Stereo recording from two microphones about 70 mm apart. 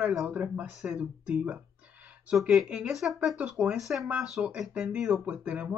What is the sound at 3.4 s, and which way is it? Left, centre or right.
Speech, right.